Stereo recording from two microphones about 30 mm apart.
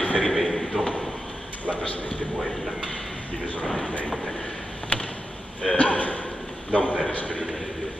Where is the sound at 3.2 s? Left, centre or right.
Left.